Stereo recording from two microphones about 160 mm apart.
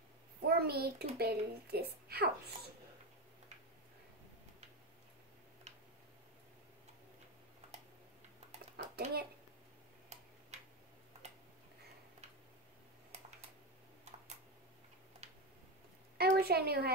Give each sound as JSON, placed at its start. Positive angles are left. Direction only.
{"t": 0.5, "sound": "a child's voice", "side_deg": -75}
{"t": 8.7, "sound": "dishes", "side_deg": -80}
{"t": 15.2, "sound": "tick-tock", "side_deg": -40}
{"t": 16.2, "sound": "a sound", "side_deg": -75}